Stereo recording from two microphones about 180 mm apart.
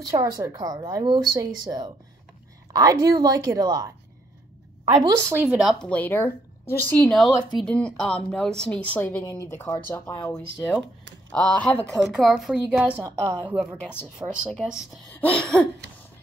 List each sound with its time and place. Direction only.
0.0 s speech: 20° right (ahead or behind)
4.9 s a woman's voice: 15° right (ahead or behind)
5.9 s a woman's voice: 10° left (ahead or behind)
15.1 s speech: 5° left (ahead or behind)